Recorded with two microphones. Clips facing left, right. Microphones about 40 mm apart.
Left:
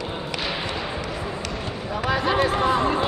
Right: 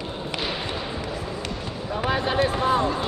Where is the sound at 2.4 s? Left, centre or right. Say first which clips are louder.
Left 1 dB; left.